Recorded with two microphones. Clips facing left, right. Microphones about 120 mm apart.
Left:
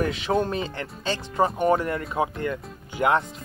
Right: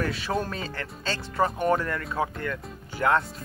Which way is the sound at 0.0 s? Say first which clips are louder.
Left 4 dB; 20° left (ahead or behind).